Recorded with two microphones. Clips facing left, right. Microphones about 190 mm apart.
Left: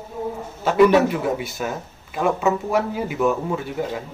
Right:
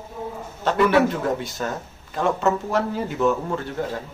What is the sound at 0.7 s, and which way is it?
Speech, 5° left (ahead or behind).